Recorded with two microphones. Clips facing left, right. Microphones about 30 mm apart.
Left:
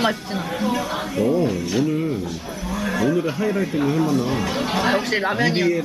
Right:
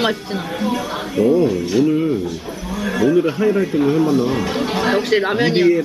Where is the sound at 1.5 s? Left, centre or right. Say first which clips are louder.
Right 5 dB; centre.